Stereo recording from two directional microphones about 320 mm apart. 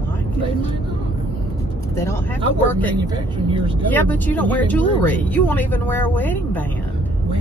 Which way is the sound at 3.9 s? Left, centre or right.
Centre.